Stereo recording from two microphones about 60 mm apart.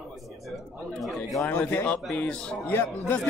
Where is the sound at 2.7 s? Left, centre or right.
Left.